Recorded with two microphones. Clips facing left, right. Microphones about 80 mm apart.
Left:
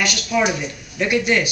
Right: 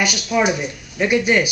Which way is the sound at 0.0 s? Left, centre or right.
Centre.